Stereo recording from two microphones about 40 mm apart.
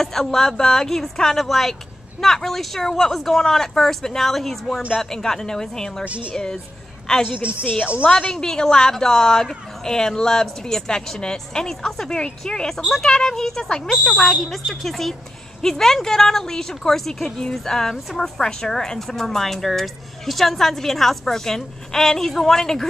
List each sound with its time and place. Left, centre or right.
0.0 s a woman's voice: centre
14.2 s a woman's voice: centre